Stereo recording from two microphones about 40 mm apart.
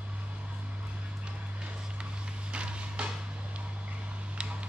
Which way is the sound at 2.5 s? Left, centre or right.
Right.